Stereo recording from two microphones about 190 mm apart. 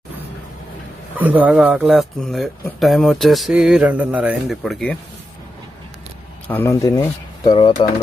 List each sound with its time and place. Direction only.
1.1 s speech: 10° right (ahead or behind)
6.4 s speech: 10° left (ahead or behind)